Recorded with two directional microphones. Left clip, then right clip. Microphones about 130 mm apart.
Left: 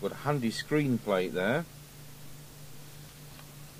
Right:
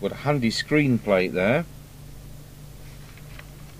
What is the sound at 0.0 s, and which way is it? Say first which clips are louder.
Speech: right 7 dB; 35° right (ahead or behind).